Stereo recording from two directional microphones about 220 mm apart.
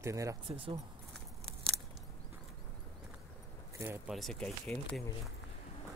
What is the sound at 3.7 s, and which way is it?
Speech, 5° right (ahead or behind).